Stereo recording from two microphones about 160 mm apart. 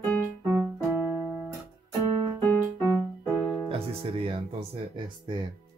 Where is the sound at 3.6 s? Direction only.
35° right (ahead or behind).